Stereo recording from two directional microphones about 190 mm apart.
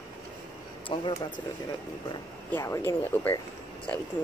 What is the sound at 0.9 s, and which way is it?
Speech, 25° left (ahead or behind).